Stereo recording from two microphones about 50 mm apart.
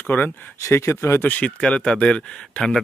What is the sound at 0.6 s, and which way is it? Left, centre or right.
Speech, left.